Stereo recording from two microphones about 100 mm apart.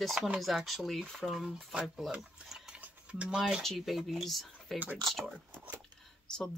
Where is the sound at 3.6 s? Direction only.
Centre (ahead or behind).